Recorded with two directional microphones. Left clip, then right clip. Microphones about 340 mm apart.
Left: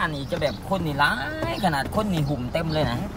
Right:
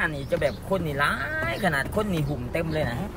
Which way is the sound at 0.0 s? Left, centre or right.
Centre.